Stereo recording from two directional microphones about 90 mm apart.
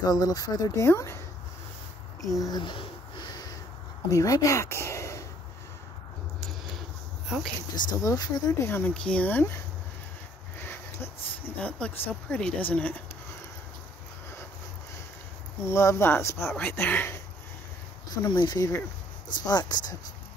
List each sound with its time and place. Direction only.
0.0 s speech: 45° left (ahead or behind)
0.7 s speech: 30° left (ahead or behind)
2.2 s speech: 40° left (ahead or behind)
2.6 s a sound: 65° left (ahead or behind)
4.1 s speech: 40° left (ahead or behind)
7.7 s speech: 40° left (ahead or behind)
8.5 s speech: 25° left (ahead or behind)
8.9 s speech: 10° left (ahead or behind)
10.6 s a sound: 25° left (ahead or behind)
11.8 s speech: 10° left (ahead or behind)
15.6 s speech: 30° left (ahead or behind)
18.1 s speech: 55° left (ahead or behind)